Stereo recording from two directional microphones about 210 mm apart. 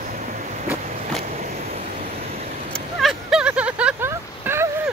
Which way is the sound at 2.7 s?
Centre (ahead or behind).